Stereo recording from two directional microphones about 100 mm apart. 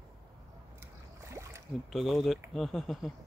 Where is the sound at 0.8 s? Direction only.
30° right (ahead or behind).